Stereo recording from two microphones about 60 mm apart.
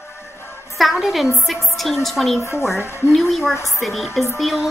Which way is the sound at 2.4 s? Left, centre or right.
Left.